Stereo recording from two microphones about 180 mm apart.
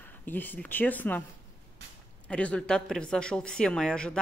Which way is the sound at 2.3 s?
5° left (ahead or behind).